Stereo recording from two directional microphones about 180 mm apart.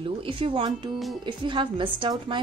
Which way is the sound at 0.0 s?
30° right (ahead or behind).